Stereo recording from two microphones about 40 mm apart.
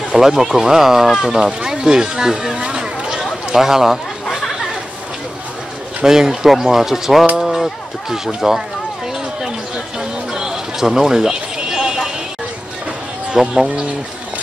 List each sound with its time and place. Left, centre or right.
0.1 s speech: centre
3.3 s a sound: centre
6.0 s speech: centre
9.9 s music: centre
13.3 s speech: centre